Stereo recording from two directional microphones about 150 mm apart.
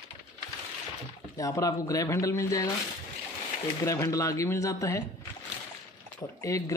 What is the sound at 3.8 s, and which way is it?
Speech, 20° left (ahead or behind).